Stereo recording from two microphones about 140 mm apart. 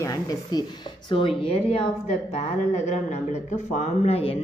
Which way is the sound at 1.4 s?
40° left (ahead or behind).